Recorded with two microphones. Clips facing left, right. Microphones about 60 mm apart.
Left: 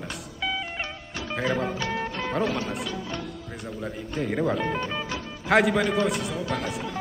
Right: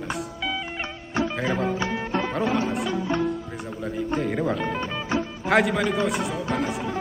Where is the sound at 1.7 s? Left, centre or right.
Right.